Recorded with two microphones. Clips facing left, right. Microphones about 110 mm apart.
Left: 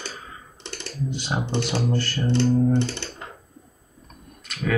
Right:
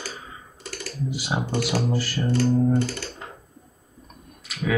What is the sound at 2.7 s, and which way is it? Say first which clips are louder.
Computer keyboard: even; 25° left (ahead or behind).